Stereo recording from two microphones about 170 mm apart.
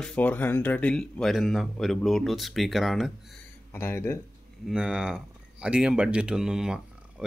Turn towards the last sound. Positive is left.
turn(degrees=-5)  # may be behind; listen again after turning